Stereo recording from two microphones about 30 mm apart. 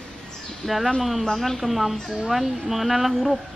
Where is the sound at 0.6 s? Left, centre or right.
Centre.